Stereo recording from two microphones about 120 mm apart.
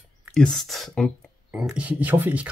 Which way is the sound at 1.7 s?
10° right (ahead or behind).